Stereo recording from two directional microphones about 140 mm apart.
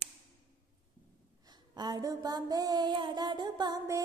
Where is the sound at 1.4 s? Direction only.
30° right (ahead or behind).